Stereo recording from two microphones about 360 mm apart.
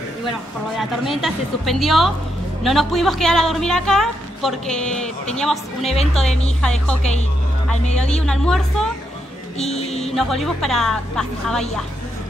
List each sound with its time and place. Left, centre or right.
0.7 s a woman's voice: centre
8.3 s a woman's voice: centre
9.6 s speech: centre
10.0 s a woman's voice: centre